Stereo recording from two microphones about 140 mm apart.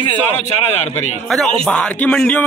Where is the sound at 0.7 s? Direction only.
50° left (ahead or behind).